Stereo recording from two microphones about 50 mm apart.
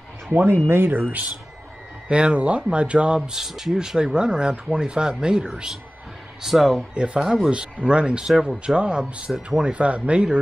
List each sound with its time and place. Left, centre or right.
0.3 s speech: right
2.0 s speech: right
3.3 s speech: centre
6.9 s speech: centre
7.2 s speech: centre
9.3 s speech: centre
9.7 s speech: right